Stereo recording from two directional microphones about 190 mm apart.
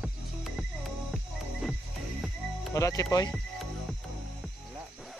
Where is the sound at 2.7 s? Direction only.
15° left (ahead or behind).